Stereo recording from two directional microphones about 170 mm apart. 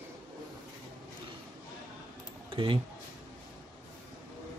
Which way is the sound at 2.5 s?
30° right (ahead or behind).